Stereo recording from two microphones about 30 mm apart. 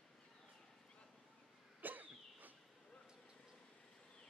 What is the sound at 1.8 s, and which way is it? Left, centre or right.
Cough, right.